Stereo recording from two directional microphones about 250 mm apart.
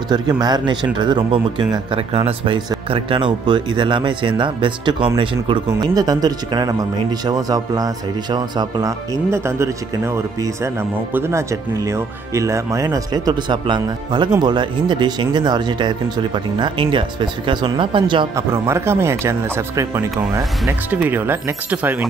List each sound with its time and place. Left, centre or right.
0.1 s speech: centre